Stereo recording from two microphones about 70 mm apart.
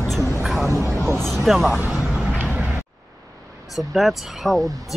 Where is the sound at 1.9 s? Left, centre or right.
Centre.